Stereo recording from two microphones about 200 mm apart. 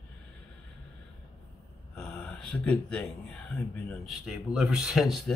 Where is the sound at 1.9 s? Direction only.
5° left (ahead or behind).